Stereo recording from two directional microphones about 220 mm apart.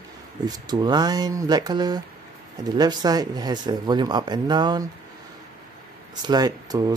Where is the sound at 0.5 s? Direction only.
20° right (ahead or behind).